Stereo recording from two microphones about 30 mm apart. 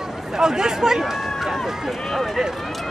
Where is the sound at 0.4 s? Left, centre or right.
Right.